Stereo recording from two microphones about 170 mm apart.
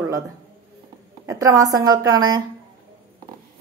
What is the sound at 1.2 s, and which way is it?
Speech, 20° right (ahead or behind).